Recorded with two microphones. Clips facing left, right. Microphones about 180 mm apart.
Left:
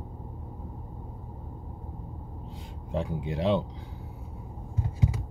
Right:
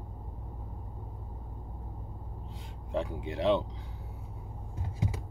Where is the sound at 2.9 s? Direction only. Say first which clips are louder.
Left 2 dB; 35° left (ahead or behind).